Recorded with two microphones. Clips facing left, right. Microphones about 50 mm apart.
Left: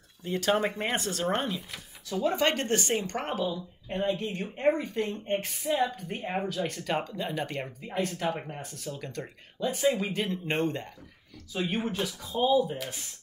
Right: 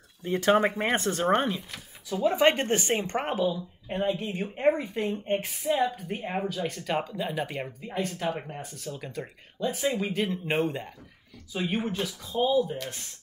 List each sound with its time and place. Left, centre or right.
0.3 s speech: right
2.2 s speech: centre